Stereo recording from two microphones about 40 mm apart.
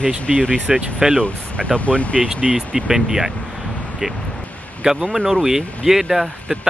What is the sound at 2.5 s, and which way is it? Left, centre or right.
Speech, centre.